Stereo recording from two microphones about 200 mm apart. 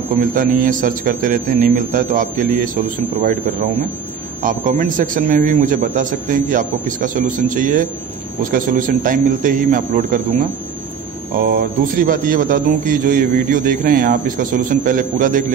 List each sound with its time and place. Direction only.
0.3 s a man's voice: 45° right (ahead or behind)
4.4 s a man's voice: 40° right (ahead or behind)
11.4 s a man's voice: 50° right (ahead or behind)